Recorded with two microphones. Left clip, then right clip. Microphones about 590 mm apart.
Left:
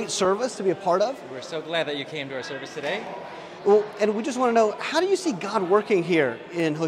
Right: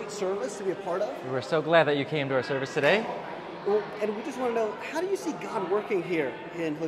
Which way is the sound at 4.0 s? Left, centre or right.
Left.